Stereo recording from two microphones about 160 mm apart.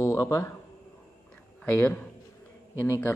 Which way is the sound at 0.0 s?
20° left (ahead or behind).